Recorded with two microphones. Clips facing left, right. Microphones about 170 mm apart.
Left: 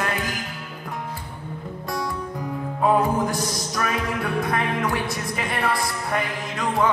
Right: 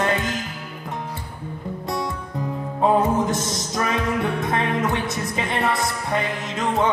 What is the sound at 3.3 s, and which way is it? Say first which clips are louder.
Music: right 2 dB; 20° right (ahead or behind).